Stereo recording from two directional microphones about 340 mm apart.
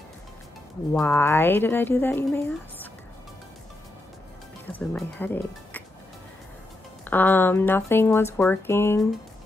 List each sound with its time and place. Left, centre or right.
0.9 s speech: centre
4.7 s speech: centre
7.1 s speech: centre